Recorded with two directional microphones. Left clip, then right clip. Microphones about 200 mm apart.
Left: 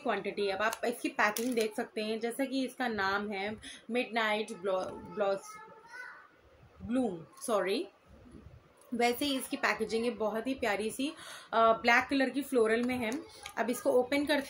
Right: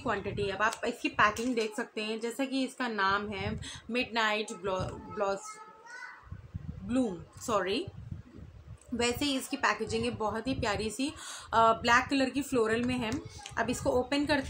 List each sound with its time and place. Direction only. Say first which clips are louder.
0.0 s a woman's voice: even; 15° right (ahead or behind)
6.9 s a woman's voice: right 1 dB; 15° right (ahead or behind)
8.9 s a woman's voice: even; 10° right (ahead or behind)